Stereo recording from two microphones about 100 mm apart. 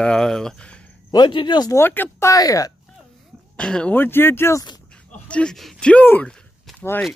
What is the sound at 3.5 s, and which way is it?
Speech, 10° left (ahead or behind).